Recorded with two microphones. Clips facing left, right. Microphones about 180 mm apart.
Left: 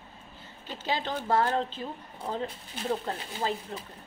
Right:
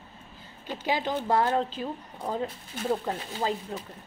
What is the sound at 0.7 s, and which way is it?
A woman's voice, 15° right (ahead or behind).